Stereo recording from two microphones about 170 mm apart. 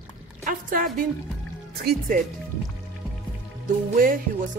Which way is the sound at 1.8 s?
60° right (ahead or behind).